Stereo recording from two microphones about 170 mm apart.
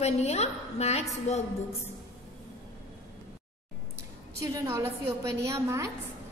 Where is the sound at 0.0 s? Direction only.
40° left (ahead or behind).